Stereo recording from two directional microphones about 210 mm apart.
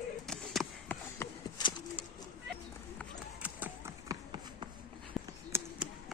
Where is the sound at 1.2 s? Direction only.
15° left (ahead or behind).